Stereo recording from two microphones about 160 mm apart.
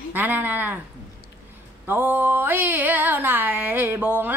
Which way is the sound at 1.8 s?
10° right (ahead or behind).